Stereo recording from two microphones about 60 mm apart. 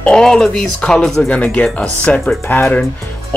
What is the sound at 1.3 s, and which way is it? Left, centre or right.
Speech, left.